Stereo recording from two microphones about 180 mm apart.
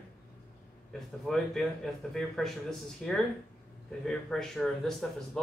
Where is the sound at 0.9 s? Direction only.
Centre (ahead or behind).